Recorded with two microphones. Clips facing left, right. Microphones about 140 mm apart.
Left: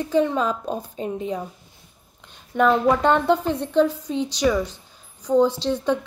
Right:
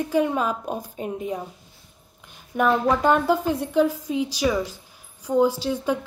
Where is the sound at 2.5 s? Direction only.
10° right (ahead or behind).